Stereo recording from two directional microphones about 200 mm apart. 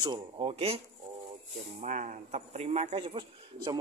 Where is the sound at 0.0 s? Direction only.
20° right (ahead or behind).